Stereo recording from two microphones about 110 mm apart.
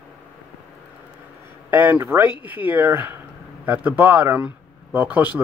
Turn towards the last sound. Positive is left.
turn(degrees=-15)  # may be behind; listen again after turning